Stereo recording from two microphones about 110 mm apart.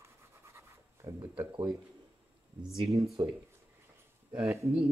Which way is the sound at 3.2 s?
40° right (ahead or behind).